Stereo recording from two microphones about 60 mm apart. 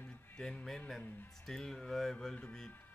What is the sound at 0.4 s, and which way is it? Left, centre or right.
Speech, centre.